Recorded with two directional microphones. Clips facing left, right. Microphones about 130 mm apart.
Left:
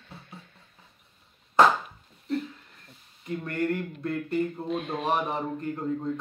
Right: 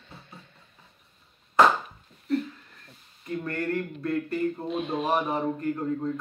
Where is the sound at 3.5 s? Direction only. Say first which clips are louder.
Left 1 dB; 20° left (ahead or behind).